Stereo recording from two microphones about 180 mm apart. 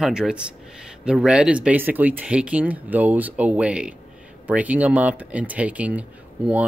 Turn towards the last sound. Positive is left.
turn(degrees=-10)  # may be behind; listen again after turning